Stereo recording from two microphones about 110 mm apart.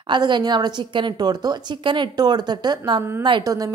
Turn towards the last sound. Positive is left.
turn(degrees=-35)  # may be behind; listen again after turning